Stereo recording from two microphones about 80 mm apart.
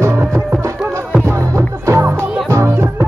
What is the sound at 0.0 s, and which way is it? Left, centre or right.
Music, right.